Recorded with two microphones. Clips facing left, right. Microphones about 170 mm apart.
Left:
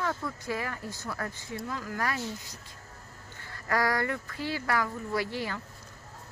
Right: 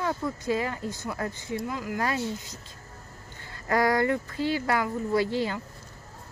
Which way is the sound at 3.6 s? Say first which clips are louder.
Right 5 dB; 20° right (ahead or behind).